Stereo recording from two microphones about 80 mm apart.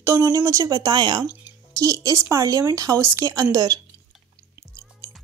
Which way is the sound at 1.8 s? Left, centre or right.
Right.